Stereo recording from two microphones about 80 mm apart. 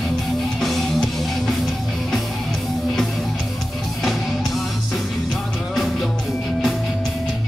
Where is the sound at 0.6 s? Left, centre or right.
Centre.